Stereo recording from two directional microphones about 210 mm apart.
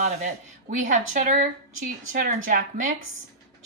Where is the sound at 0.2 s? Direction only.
35° right (ahead or behind).